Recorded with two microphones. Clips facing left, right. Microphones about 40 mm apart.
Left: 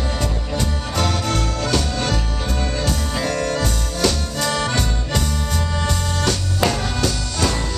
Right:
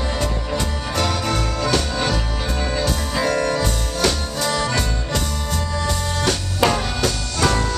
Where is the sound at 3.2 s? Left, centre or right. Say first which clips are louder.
Right 3 dB; right.